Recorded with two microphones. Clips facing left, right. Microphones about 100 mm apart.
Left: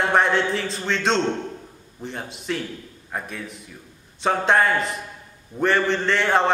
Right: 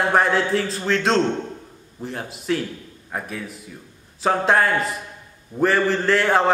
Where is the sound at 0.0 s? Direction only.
Centre (ahead or behind).